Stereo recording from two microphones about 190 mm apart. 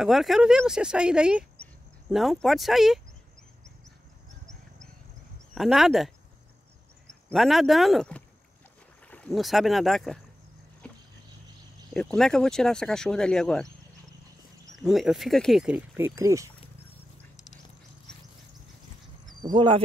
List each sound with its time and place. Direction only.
0.0 s speech: centre (ahead or behind)
5.5 s speech: centre (ahead or behind)
7.2 s speech: centre (ahead or behind)
10.8 s a sound: 5° left (ahead or behind)
11.9 s speech: 5° left (ahead or behind)
14.8 s speech: centre (ahead or behind)
19.4 s speech: 25° right (ahead or behind)